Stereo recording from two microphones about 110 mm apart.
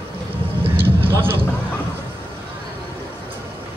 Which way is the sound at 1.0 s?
20° right (ahead or behind).